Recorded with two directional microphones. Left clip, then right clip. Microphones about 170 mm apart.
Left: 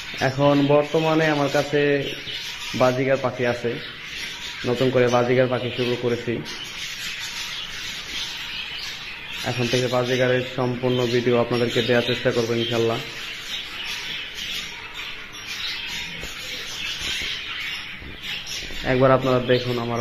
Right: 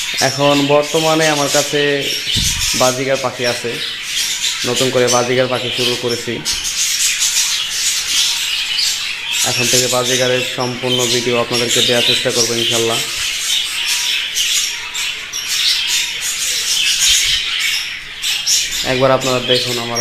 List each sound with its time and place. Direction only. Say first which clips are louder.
0.2 s speech: right 5 dB; 30° right (ahead or behind)
4.6 s speech: right 4 dB; 30° right (ahead or behind)
9.8 s speech: right 6 dB; 25° right (ahead or behind)
18.9 s speech: right 3 dB; 20° right (ahead or behind)